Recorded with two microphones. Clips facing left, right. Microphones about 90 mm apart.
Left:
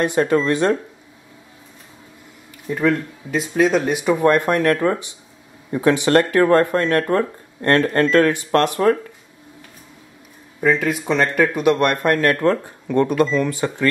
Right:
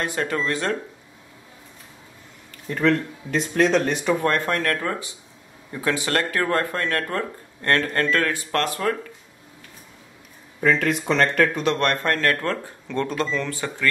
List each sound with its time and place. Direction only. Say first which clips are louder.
0.0 s speech: left 8 dB; 20° left (ahead or behind)
2.7 s a man's voice: left 2 dB; 5° left (ahead or behind); by 8.9 s 20° left (ahead or behind)
10.6 s a man's voice: left 2 dB; 5° left (ahead or behind)